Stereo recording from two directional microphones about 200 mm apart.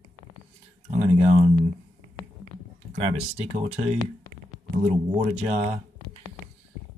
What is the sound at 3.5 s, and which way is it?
Speech, 30° right (ahead or behind).